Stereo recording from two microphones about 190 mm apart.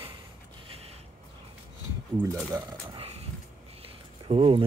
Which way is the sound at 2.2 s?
10° right (ahead or behind).